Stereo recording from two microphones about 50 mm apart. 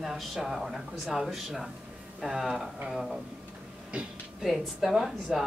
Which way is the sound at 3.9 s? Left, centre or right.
Right.